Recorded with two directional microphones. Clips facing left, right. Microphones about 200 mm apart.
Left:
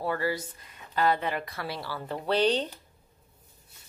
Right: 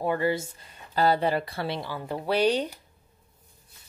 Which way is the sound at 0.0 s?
20° right (ahead or behind).